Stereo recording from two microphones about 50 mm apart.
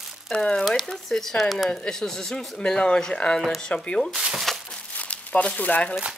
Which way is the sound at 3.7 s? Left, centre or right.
Left.